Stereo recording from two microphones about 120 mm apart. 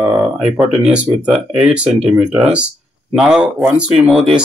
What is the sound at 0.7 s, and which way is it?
Speech, 5° right (ahead or behind).